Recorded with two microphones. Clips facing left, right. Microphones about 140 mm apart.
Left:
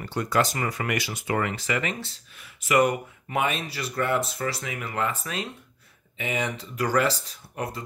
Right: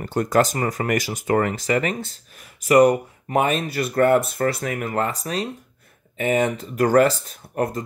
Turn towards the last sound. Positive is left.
turn(degrees=-50)  # may be behind; listen again after turning